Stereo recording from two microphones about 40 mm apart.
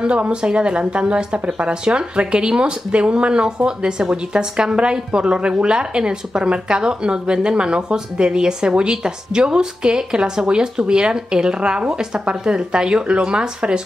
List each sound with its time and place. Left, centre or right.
0.0 s a woman's voice: right